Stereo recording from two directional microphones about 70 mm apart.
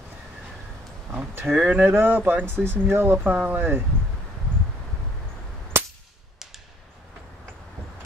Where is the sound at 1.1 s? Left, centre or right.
Right.